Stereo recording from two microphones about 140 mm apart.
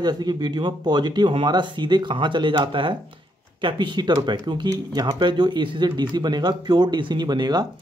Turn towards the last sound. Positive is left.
turn(degrees=-30)  # may be behind; listen again after turning